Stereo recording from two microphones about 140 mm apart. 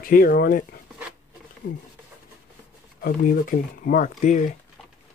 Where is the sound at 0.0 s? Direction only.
90° left.